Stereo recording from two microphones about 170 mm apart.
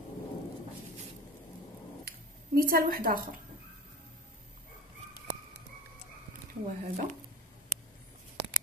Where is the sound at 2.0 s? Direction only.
60° right (ahead or behind).